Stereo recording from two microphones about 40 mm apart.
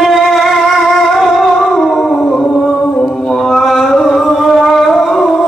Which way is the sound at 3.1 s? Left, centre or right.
Centre.